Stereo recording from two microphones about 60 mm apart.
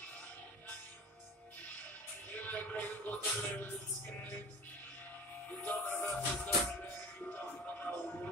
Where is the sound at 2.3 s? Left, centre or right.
Left.